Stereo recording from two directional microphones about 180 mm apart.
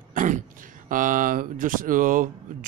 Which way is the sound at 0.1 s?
45° right (ahead or behind).